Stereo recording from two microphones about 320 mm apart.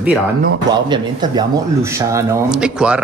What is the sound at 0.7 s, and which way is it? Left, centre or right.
A man's voice, centre.